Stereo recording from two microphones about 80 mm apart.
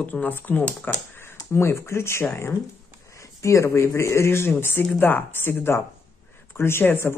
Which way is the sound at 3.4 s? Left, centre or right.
Left.